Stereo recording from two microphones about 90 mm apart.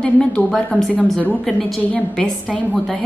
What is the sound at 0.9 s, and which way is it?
Speech, 15° left (ahead or behind).